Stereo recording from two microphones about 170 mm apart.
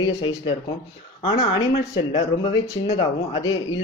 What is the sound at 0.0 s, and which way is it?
Speech, 30° left (ahead or behind).